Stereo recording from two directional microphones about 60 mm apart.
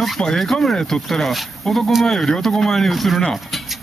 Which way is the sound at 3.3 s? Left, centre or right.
Centre.